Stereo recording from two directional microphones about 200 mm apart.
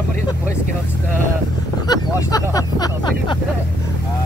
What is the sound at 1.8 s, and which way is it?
Speech, 20° left (ahead or behind).